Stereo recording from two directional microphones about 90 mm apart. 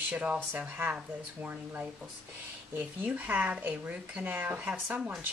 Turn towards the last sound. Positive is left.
turn(degrees=-15)  # may be behind; listen again after turning